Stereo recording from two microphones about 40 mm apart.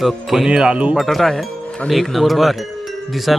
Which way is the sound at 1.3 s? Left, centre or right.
Centre.